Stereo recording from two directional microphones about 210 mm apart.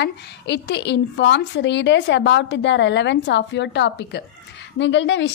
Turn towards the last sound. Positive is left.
turn(degrees=60)  # may be behind; listen again after turning